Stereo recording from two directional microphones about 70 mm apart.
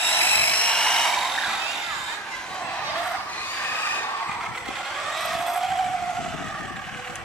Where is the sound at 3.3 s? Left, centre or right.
Left.